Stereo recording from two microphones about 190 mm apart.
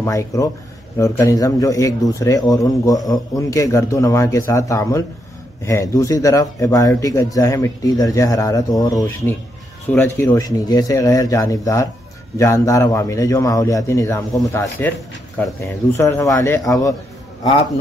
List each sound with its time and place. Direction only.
0.0 s a man's voice: 15° left (ahead or behind)